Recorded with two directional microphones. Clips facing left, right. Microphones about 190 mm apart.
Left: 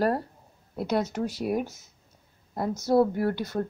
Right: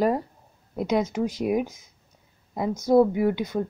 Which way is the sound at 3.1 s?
15° right (ahead or behind).